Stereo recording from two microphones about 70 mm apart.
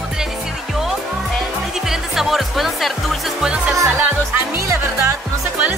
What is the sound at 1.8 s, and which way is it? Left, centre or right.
Music, centre.